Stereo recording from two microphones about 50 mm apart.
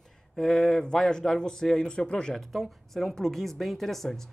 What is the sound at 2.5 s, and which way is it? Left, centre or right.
Speech, centre.